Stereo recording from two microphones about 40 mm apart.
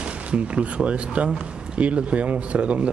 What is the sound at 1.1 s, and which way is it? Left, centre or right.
A man's voice, right.